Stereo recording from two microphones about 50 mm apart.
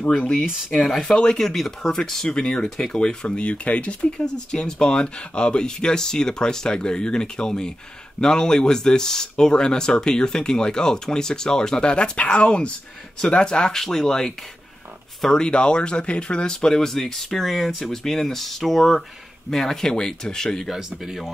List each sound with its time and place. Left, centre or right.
0.3 s speech: centre
1.0 s speech: centre
1.4 s speech: centre; by 3.9 s left
4.0 s speech: centre
20.7 s speech: centre